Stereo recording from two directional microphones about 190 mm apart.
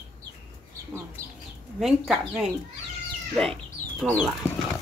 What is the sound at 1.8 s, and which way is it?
Speech, centre (ahead or behind).